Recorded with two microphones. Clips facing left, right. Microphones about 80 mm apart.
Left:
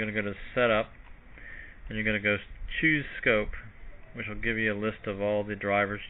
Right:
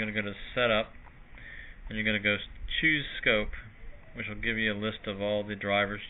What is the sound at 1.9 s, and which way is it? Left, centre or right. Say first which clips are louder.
Speech: left 1 dB; centre.